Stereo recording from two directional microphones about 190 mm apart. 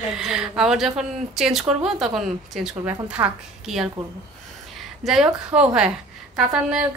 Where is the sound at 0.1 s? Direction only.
Centre (ahead or behind).